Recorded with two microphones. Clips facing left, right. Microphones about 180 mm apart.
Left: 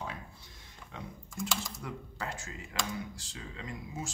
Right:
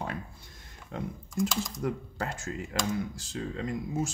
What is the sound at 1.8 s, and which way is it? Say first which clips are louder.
Speech: right 8 dB; 45° right (ahead or behind).